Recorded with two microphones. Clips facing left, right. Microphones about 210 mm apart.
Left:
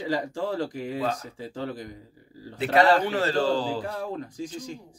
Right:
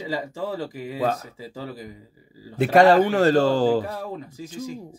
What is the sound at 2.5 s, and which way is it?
A man's voice, 50° right (ahead or behind).